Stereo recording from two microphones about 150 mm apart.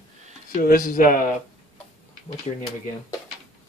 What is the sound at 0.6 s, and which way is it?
Speech, 70° left (ahead or behind).